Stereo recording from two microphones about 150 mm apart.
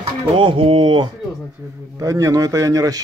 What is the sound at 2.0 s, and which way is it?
Speech, 20° right (ahead or behind).